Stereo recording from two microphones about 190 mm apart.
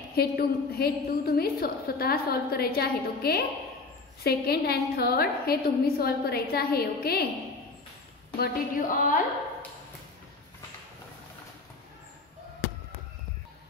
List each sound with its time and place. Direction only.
0.1 s a woman's voice: 55° left (ahead or behind)
8.4 s a woman's voice: 45° left (ahead or behind)